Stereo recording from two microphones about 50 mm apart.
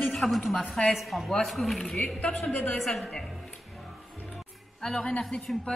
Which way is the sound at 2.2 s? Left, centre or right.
Left.